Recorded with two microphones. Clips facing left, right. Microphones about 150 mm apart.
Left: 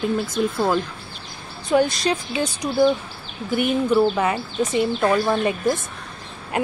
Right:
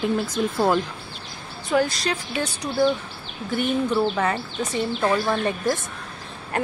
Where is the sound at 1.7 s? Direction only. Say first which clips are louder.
Left 3 dB; 20° left (ahead or behind).